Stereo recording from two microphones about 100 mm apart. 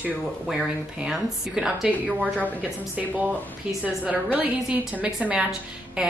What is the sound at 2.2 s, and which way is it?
Speech, 15° left (ahead or behind).